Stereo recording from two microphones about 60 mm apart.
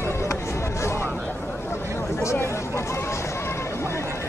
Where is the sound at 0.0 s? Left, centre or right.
Left.